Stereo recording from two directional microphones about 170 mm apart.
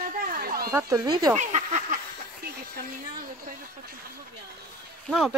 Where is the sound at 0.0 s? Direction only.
60° right (ahead or behind).